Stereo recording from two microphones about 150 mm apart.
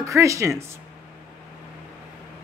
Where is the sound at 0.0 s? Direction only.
20° right (ahead or behind).